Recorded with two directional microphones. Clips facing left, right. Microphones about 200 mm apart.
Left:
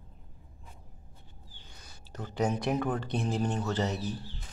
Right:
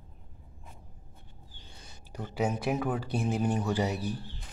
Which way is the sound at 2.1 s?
10° right (ahead or behind).